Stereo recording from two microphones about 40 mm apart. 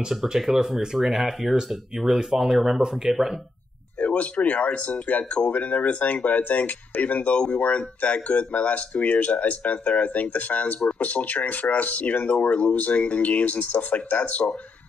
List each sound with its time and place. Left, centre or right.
0.0 s speech: centre
4.0 s speech: left